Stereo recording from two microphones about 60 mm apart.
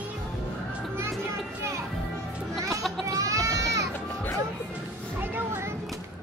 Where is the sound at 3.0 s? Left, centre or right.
Right.